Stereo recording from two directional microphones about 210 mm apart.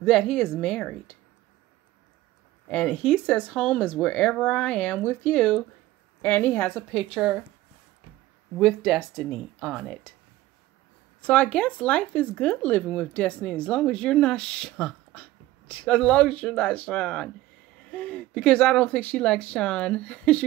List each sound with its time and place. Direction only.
0.0 s speech: centre (ahead or behind)
2.7 s speech: 5° left (ahead or behind)
6.9 s speech: 5° right (ahead or behind)
8.5 s speech: centre (ahead or behind)
11.1 s speech: 5° left (ahead or behind)